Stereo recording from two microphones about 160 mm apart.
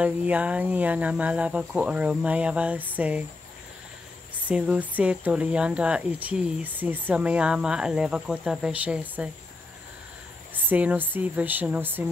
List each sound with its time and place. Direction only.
0.0 s speech: 10° right (ahead or behind)
4.5 s speech: 10° right (ahead or behind)
10.5 s speech: 10° right (ahead or behind)